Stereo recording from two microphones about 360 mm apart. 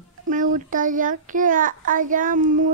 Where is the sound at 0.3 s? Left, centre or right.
Right.